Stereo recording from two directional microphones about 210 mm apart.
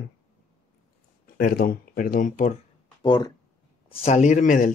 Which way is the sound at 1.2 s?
40° left (ahead or behind).